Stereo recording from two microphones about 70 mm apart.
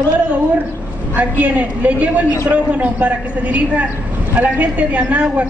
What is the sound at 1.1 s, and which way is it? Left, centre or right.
Speech, right.